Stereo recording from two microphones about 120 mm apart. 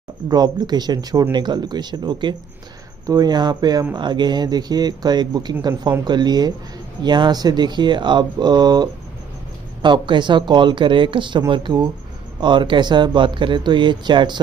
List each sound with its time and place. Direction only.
0.3 s speech: 35° right (ahead or behind)